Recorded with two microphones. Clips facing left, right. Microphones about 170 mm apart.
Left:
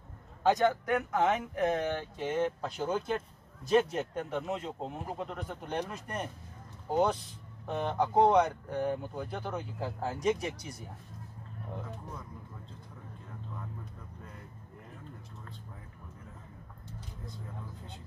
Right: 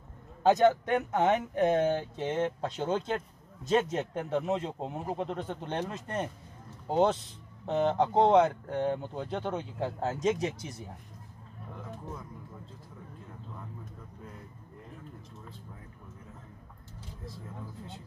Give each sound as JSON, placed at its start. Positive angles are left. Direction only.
{"t": 0.5, "sound": "speech", "side_deg": -25}